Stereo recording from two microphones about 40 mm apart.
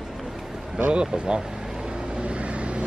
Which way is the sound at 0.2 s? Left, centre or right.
Centre.